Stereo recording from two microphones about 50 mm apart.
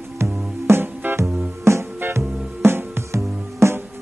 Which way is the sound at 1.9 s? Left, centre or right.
Right.